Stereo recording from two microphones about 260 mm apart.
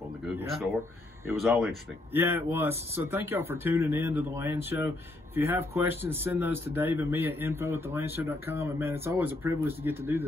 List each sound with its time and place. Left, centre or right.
0.4 s speech: centre